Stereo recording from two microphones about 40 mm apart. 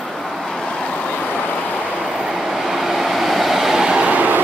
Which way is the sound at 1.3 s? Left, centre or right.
Left.